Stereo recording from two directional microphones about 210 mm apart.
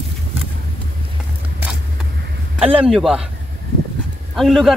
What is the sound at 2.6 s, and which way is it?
Speech, centre (ahead or behind).